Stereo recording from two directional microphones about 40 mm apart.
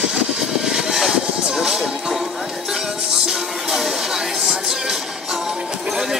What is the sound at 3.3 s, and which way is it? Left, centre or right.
Music, centre.